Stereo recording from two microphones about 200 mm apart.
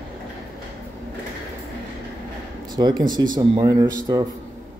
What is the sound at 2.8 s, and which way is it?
Speech, 20° right (ahead or behind).